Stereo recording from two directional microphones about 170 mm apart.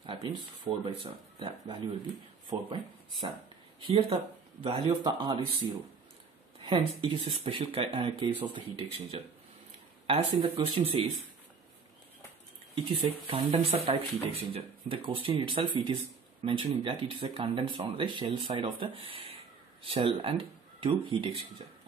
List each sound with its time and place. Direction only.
0.0 s a sound: 30° right (ahead or behind)
0.8 s speech: 30° right (ahead or behind)
10.0 s speech: 35° right (ahead or behind)
13.3 s speech: 35° right (ahead or behind)